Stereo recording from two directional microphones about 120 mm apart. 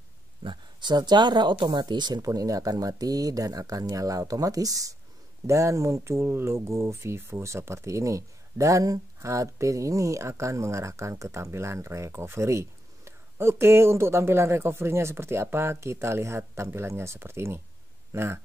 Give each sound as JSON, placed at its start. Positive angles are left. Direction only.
{"t": 0.4, "sound": "speech", "side_deg": -40}